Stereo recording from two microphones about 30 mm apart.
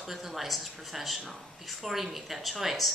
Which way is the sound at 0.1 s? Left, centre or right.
Centre.